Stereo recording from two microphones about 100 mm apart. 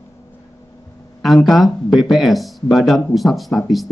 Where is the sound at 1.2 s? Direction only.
Centre (ahead or behind).